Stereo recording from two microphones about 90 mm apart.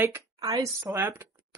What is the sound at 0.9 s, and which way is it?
Speech, 30° right (ahead or behind).